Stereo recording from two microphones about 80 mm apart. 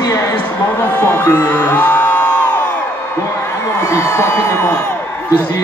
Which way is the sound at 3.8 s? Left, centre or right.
Left.